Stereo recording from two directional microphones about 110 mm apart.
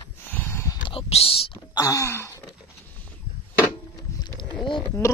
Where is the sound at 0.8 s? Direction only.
55° left (ahead or behind).